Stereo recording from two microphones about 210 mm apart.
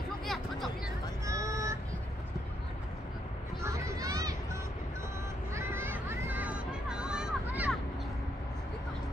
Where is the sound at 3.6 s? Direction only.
15° right (ahead or behind).